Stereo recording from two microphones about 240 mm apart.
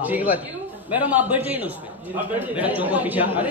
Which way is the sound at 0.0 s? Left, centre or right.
Centre.